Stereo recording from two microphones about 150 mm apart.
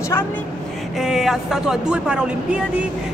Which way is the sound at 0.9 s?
Centre (ahead or behind).